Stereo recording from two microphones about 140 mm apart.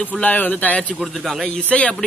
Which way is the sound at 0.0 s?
10° left (ahead or behind).